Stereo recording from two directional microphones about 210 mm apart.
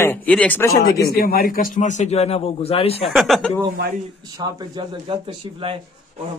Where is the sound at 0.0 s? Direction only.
10° left (ahead or behind).